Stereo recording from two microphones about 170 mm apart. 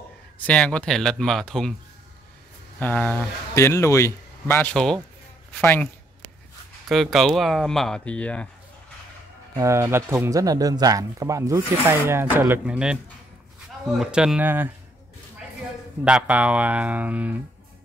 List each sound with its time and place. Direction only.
0.5 s speech: 5° left (ahead or behind)
2.8 s speech: 10° left (ahead or behind)
6.9 s speech: centre (ahead or behind)
9.6 s speech: 15° right (ahead or behind)
16.0 s speech: 5° right (ahead or behind)